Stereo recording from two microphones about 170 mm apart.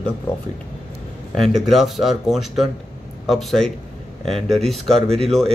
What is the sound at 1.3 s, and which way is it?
Speech, centre (ahead or behind).